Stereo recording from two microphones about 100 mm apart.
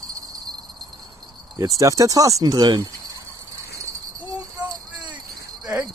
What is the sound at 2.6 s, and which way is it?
Speech, 45° right (ahead or behind).